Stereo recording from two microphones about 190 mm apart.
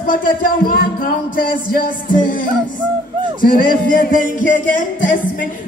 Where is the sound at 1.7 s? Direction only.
45° left (ahead or behind).